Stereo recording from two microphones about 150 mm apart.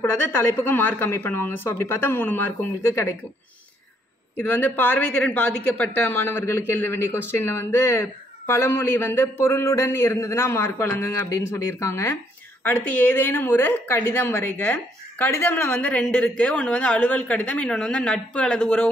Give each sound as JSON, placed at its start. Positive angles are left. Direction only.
{"t": 0.0, "sound": "a woman's voice", "side_deg": 15}
{"t": 4.4, "sound": "a woman's voice", "side_deg": 10}